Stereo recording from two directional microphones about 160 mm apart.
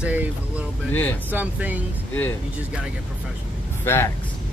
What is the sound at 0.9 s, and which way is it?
Speech, 10° left (ahead or behind).